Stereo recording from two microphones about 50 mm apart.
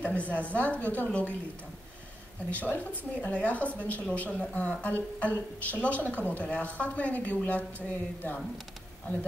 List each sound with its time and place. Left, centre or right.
0.1 s a woman's voice: left
2.5 s a woman's voice: left